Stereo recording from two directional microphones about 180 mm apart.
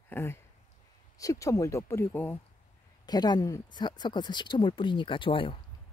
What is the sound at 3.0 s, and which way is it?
Speech, 20° left (ahead or behind).